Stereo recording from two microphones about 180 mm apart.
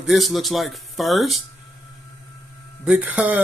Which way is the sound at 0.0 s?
Centre (ahead or behind).